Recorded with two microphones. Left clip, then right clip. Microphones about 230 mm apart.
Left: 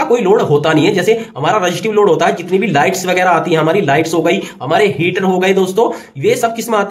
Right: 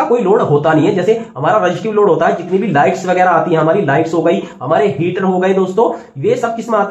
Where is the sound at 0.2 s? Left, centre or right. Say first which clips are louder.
Even; left.